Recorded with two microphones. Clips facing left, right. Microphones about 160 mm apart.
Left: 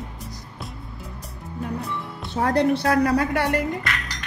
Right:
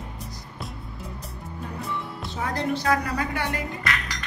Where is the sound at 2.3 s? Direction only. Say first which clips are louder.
Left 8 dB; 65° left (ahead or behind).